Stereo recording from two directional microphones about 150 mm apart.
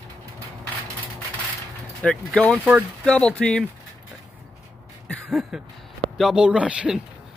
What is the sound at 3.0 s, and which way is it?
Speech, 5° left (ahead or behind).